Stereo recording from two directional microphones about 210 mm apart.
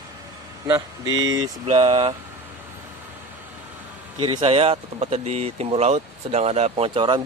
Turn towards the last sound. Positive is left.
turn(degrees=-20)  # may be behind; listen again after turning